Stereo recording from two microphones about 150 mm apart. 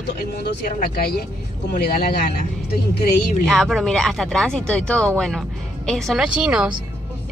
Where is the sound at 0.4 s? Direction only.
80° left.